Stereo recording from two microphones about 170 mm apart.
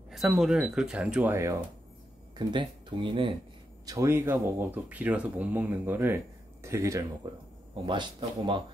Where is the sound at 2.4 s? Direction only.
25° right (ahead or behind).